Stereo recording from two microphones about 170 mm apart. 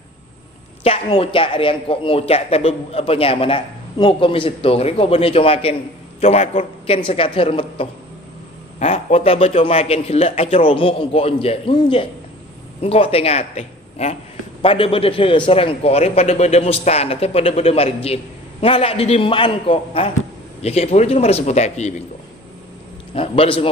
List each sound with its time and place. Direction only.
0.8 s a man's voice: 35° left (ahead or behind)
23.1 s a man's voice: 35° left (ahead or behind)